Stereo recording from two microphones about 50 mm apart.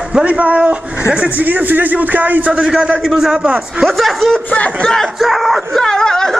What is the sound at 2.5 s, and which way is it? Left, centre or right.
A man's voice, centre.